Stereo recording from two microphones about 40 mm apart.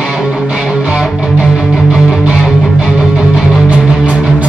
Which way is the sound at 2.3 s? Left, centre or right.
Centre.